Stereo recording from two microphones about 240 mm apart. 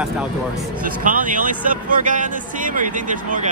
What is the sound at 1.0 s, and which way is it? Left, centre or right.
Speech, right.